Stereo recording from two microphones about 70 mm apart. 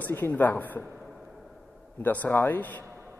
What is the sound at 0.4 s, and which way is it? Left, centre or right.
Speech, left.